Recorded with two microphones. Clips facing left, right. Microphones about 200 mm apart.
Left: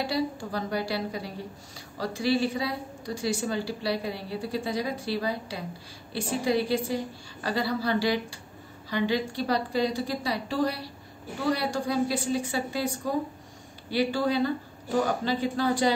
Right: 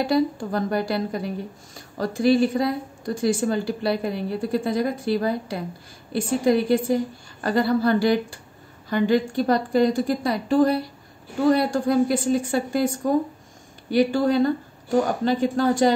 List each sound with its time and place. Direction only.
0.0 s a woman's voice: 50° right (ahead or behind)